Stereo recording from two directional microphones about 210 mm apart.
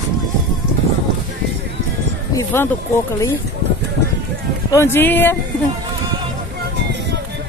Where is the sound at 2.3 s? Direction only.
15° left (ahead or behind).